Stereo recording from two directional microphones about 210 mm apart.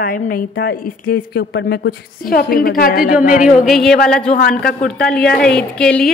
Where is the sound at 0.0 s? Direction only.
45° left (ahead or behind).